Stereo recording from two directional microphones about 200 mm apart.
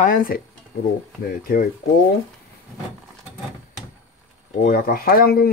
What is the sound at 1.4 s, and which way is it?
Speech, 50° left (ahead or behind).